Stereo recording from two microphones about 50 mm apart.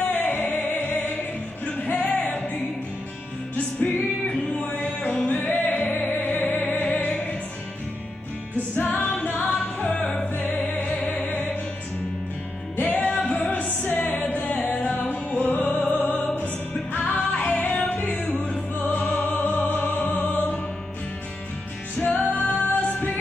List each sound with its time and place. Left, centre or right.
0.0 s music: left
3.8 s music: left
8.7 s music: left
12.7 s music: left
17.1 s music: left
18.4 s music: left
22.0 s music: left